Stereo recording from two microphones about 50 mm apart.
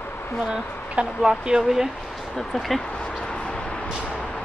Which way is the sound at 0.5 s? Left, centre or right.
Centre.